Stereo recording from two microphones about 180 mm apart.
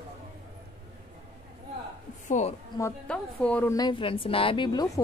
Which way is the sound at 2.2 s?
40° left (ahead or behind).